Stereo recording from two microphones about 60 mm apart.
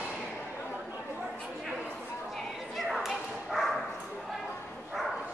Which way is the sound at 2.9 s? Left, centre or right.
Centre.